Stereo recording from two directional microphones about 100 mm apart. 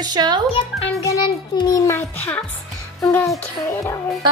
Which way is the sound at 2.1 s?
15° left (ahead or behind).